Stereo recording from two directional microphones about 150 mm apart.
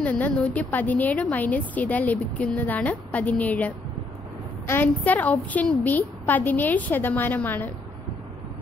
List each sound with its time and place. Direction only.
0.0 s a woman's voice: 10° left (ahead or behind)